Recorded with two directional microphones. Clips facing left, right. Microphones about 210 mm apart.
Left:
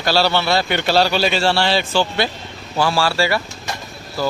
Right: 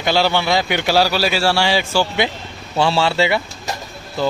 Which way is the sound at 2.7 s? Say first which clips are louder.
Right 2 dB; 25° right (ahead or behind).